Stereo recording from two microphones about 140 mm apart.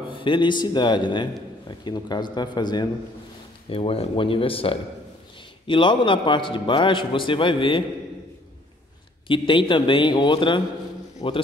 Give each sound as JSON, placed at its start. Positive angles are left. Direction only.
{"t": 0.1, "sound": "a man's voice", "side_deg": 35}
{"t": 3.6, "sound": "a man's voice", "side_deg": 40}
{"t": 9.3, "sound": "a man's voice", "side_deg": 35}